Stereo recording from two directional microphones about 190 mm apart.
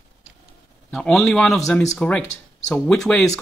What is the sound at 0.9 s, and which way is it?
Speech, centre (ahead or behind).